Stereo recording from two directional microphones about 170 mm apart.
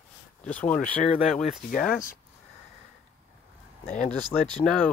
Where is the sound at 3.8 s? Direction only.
45° left (ahead or behind).